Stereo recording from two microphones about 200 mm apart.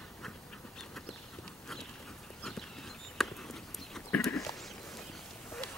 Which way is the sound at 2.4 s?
Centre (ahead or behind).